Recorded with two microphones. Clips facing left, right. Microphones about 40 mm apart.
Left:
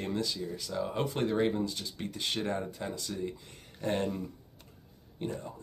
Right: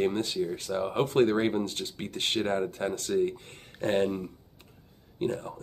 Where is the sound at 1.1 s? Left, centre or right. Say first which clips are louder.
Right 6 dB; right.